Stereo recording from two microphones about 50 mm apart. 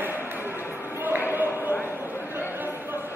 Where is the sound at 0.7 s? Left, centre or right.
Right.